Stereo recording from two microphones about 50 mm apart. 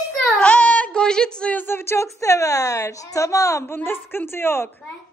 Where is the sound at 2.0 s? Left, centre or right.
Left.